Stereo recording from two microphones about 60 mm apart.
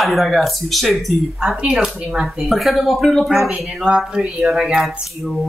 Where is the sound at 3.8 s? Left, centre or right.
Centre.